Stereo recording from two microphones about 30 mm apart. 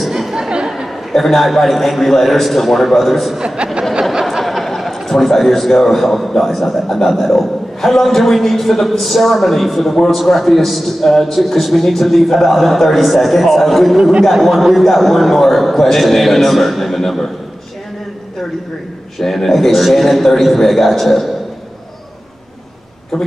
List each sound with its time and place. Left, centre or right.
1.1 s a man's voice: centre
3.3 s speech: right
4.3 s a man's voice: centre
14.5 s a man's voice: centre
14.8 s a man's voice: centre
19.1 s a man's voice: centre